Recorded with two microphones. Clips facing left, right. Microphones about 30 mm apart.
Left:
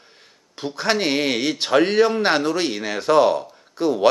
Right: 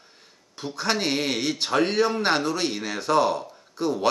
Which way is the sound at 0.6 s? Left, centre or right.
Left.